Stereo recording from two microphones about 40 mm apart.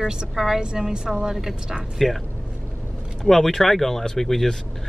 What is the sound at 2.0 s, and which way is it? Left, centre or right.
Speech, centre.